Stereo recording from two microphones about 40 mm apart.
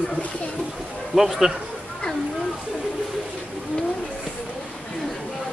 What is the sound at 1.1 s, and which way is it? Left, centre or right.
Speech, centre.